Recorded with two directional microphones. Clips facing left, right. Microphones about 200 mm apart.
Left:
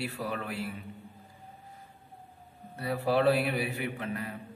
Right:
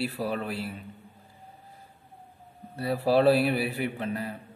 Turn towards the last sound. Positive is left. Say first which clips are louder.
# right 4 dB
turn(degrees=-35)  # may be behind; listen again after turning